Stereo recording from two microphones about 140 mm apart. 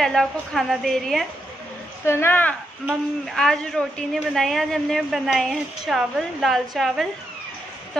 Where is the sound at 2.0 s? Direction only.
15° left (ahead or behind).